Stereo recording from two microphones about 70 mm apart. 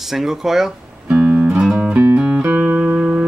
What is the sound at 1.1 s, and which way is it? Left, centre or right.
Music, centre.